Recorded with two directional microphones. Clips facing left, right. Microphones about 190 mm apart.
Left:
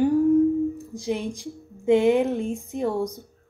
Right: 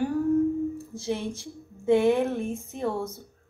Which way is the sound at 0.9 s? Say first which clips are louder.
Left 3 dB; 15° left (ahead or behind).